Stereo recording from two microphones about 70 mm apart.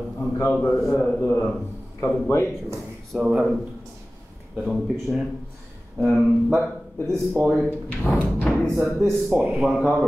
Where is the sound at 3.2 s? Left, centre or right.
Centre.